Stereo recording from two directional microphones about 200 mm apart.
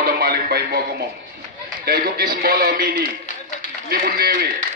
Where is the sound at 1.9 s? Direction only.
50° right (ahead or behind).